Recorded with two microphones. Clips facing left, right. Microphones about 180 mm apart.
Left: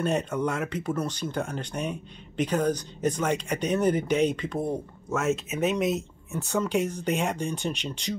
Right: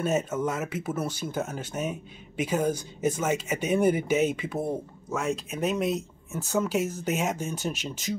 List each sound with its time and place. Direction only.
0.0 s speech: 5° right (ahead or behind)